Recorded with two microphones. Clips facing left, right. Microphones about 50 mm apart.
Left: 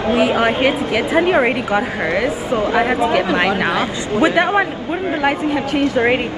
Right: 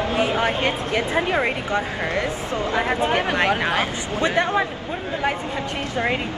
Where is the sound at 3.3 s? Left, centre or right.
Left.